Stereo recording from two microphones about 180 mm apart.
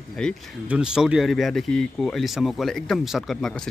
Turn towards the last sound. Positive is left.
turn(degrees=0)  # may be behind; listen again after turning